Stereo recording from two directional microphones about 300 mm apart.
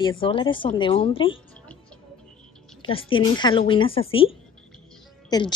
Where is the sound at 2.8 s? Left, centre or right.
Centre.